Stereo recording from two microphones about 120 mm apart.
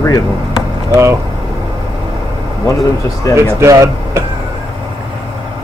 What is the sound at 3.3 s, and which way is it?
Speech, 25° right (ahead or behind).